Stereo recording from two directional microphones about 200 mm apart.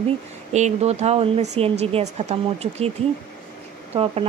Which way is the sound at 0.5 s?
35° right (ahead or behind).